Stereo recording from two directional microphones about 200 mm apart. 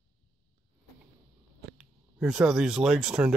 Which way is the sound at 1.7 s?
5° right (ahead or behind).